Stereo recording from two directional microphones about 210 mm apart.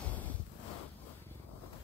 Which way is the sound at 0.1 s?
5° left (ahead or behind).